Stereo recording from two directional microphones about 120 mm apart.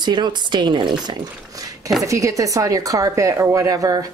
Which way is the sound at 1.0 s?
30° right (ahead or behind).